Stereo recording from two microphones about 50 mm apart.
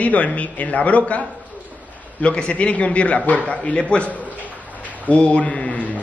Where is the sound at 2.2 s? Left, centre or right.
Left.